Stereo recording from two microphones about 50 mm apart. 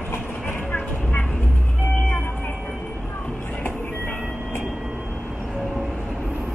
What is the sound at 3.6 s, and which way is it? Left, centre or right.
Music, left.